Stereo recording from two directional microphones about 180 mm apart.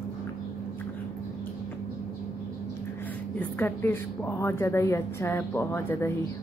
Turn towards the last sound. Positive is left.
turn(degrees=15)  # may be behind; listen again after turning